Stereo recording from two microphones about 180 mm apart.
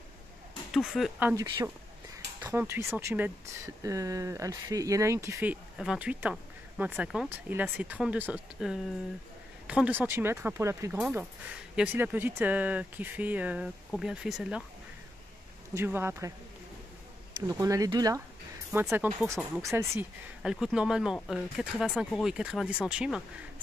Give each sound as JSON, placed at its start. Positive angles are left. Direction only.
{"t": 0.7, "sound": "speech", "side_deg": 0}
{"t": 1.3, "sound": "speech", "side_deg": -20}
{"t": 15.7, "sound": "speech", "side_deg": -15}
{"t": 17.5, "sound": "speech", "side_deg": -20}
{"t": 20.4, "sound": "speech", "side_deg": -5}